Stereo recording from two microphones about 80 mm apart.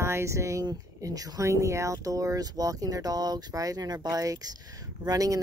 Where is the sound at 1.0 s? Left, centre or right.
Right.